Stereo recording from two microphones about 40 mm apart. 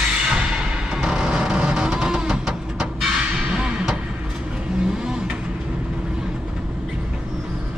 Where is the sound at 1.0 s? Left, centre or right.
Right.